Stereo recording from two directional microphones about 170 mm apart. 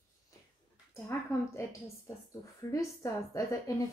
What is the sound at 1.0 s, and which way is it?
A woman's voice, 15° left (ahead or behind).